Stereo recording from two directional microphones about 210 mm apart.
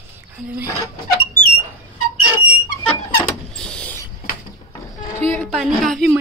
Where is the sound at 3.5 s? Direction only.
5° left (ahead or behind).